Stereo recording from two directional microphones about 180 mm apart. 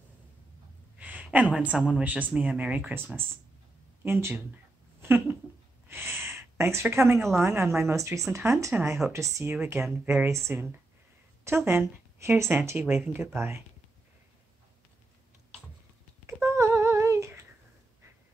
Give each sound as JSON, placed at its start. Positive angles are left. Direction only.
{"t": 0.9, "sound": "speech", "side_deg": -10}
{"t": 5.0, "sound": "a sound", "side_deg": -10}
{"t": 5.9, "sound": "gasp", "side_deg": -15}
{"t": 7.2, "sound": "a woman's voice", "side_deg": 0}
{"t": 7.4, "sound": "speech", "side_deg": -15}
{"t": 16.3, "sound": "a sound", "side_deg": -15}